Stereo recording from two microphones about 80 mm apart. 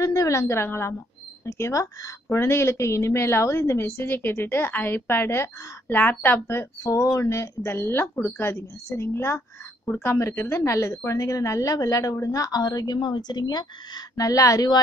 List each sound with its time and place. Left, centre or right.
0.0 s a woman's voice: left
6.8 s a woman's voice: left
7.6 s a woman's voice: left